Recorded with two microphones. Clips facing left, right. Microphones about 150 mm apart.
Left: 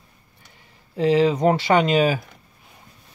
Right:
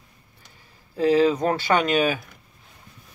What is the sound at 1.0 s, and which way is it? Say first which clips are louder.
Speech: left 1 dB; 25° left (ahead or behind).